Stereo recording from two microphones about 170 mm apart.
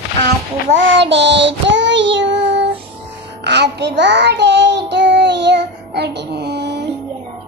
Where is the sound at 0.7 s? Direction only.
90° right.